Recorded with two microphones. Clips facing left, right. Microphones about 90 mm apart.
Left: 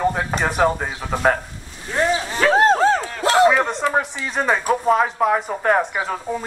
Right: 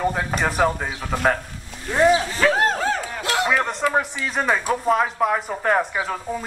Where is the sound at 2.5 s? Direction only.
30° left (ahead or behind).